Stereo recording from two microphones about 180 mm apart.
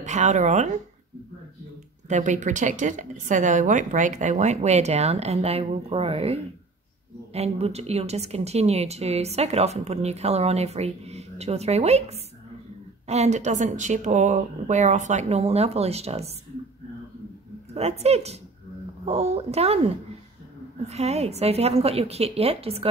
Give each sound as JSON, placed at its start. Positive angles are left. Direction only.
{"t": 0.0, "sound": "a woman's voice", "side_deg": -40}
{"t": 2.0, "sound": "a woman's voice", "side_deg": -40}
{"t": 17.7, "sound": "a woman's voice", "side_deg": -35}